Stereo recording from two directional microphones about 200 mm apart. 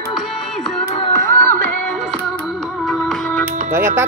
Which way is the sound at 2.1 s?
Centre (ahead or behind).